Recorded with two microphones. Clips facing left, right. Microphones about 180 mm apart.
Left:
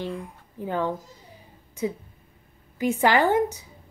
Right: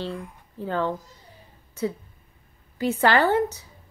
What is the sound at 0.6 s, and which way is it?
Speech, 15° left (ahead or behind).